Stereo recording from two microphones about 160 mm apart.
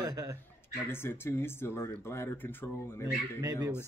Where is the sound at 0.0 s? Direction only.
25° right (ahead or behind).